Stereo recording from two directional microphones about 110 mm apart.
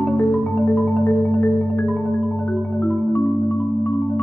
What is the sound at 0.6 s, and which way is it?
Marimba, 20° left (ahead or behind).